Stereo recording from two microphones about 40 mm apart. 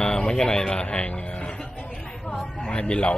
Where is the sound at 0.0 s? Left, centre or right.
Left.